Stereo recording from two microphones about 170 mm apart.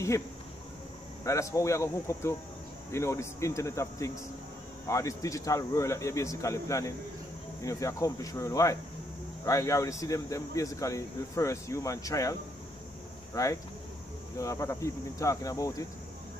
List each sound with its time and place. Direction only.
1.2 s speech: 20° left (ahead or behind)